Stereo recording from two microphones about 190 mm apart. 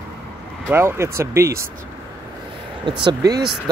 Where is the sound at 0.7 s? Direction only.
15° right (ahead or behind).